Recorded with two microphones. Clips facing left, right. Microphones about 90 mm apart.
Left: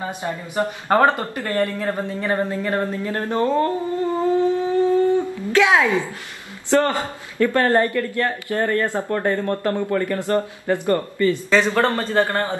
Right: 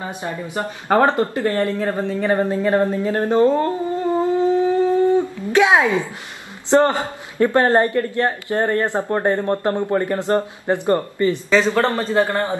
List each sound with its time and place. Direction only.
0.2 s speech: 20° right (ahead or behind)
2.2 s a sound: 20° right (ahead or behind)
6.7 s a man's voice: 20° right (ahead or behind)